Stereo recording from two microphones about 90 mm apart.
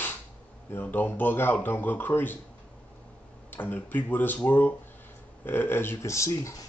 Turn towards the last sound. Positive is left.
turn(degrees=35)  # may be behind; listen again after turning